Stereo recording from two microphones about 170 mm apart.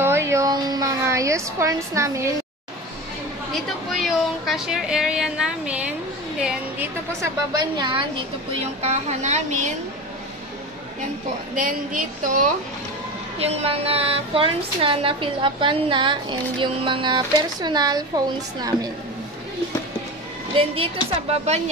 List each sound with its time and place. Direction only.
0.0 s a sound: 15° right (ahead or behind)
3.9 s a woman's voice: centre (ahead or behind)
7.5 s speech: 25° right (ahead or behind)
8.8 s a woman's voice: 45° right (ahead or behind)
11.5 s a woman's voice: 50° right (ahead or behind)
13.4 s a woman's voice: 35° right (ahead or behind)
20.5 s a woman's voice: 35° right (ahead or behind)